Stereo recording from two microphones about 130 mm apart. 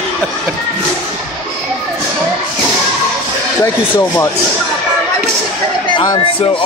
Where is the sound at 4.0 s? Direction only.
15° left (ahead or behind).